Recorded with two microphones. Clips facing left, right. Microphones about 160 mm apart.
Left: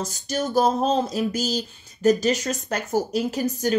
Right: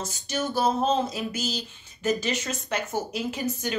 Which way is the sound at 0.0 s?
40° left (ahead or behind).